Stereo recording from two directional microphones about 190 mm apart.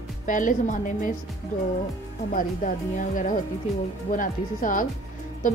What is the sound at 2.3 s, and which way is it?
A woman's voice, 45° left (ahead or behind).